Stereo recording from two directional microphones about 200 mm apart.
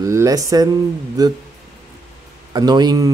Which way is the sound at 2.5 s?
20° right (ahead or behind).